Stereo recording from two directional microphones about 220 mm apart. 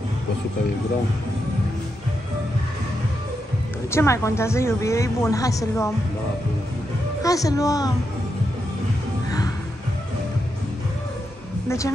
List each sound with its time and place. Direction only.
3.9 s a woman's voice: 15° left (ahead or behind)
7.2 s a man's voice: 15° left (ahead or behind)